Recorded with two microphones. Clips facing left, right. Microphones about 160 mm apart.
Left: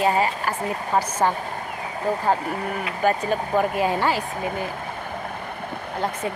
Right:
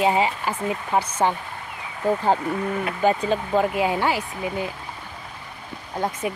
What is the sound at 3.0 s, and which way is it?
Speech, 20° right (ahead or behind).